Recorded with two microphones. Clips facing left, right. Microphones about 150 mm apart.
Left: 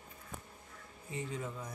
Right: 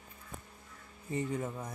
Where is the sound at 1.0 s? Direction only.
50° right (ahead or behind).